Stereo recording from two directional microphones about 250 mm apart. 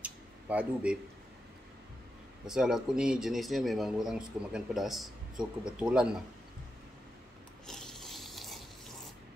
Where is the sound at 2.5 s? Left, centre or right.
Centre.